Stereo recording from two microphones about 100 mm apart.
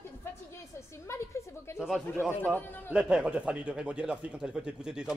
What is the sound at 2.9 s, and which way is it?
Speech, 10° right (ahead or behind).